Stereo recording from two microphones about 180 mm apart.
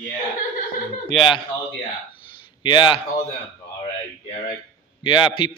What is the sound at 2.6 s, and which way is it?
Speech, 25° left (ahead or behind).